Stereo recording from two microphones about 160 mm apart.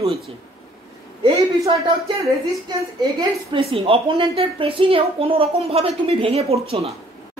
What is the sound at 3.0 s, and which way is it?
Speech, 25° right (ahead or behind).